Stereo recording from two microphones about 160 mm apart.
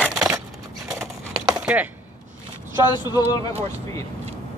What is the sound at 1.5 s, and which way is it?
Chopping, 5° right (ahead or behind).